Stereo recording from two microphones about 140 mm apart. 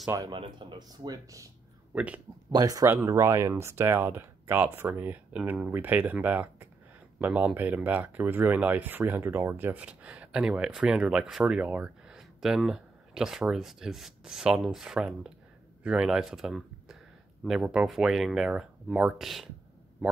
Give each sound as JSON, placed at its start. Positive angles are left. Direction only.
{"t": 0.3, "sound": "speech", "side_deg": -35}
{"t": 2.0, "sound": "speech", "side_deg": -10}
{"t": 2.5, "sound": "speech", "side_deg": -25}